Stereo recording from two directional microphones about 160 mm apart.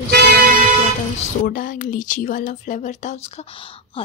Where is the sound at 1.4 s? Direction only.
55° left (ahead or behind); by 4.0 s 35° left (ahead or behind).